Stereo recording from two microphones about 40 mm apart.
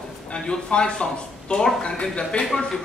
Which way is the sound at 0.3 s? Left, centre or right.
Left.